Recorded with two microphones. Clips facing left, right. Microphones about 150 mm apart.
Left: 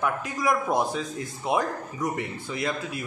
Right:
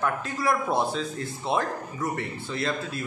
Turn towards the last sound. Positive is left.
turn(degrees=15)  # may be behind; listen again after turning